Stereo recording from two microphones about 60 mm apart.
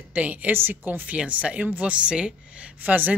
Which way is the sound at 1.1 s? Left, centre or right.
Right.